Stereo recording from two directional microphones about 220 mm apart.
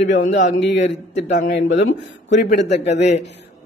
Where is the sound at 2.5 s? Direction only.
30° left (ahead or behind).